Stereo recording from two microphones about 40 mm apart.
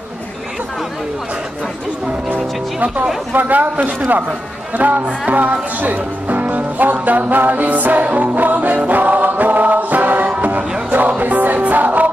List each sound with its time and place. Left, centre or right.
3.3 s a man's voice: right
10.9 s music: right